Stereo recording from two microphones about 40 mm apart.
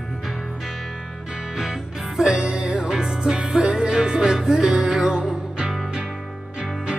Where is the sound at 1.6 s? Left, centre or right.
Centre.